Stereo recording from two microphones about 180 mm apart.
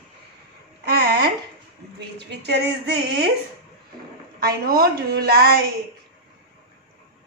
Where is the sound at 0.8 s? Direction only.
60° right (ahead or behind).